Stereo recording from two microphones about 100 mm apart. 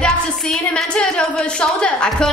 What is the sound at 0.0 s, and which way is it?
A woman's voice, 5° left (ahead or behind).